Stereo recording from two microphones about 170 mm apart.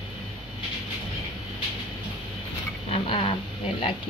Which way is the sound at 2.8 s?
35° left (ahead or behind).